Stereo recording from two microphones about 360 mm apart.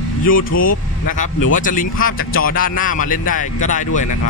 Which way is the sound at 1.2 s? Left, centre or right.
Left.